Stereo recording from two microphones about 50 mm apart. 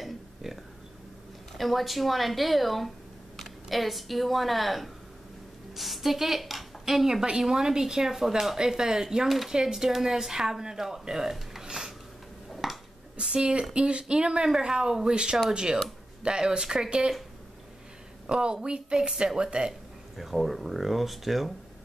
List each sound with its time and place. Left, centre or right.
0.0 s a sound: centre
1.6 s a woman's voice: centre
12.6 s a sound: centre
13.2 s a woman's voice: centre
18.2 s a woman's voice: centre
20.2 s a woman's voice: centre